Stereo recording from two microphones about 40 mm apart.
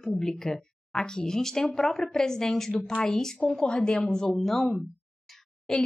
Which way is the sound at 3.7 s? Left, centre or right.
Left.